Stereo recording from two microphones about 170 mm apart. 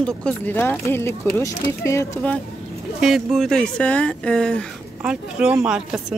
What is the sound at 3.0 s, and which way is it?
Speech, centre (ahead or behind).